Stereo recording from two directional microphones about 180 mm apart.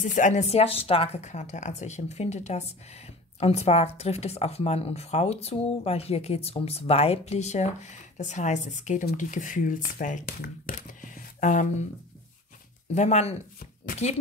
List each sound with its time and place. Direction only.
0.0 s speech: 45° left (ahead or behind)
12.9 s speech: 40° left (ahead or behind)